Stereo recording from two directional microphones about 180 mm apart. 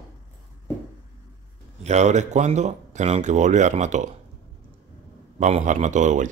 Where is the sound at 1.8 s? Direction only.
40° right (ahead or behind).